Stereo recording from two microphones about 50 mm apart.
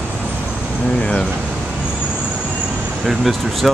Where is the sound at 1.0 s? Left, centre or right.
Centre.